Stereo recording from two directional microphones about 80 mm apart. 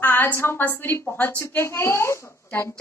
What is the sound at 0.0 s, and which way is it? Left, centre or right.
A woman's voice, left.